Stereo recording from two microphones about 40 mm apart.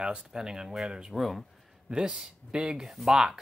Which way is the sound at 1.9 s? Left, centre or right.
Right.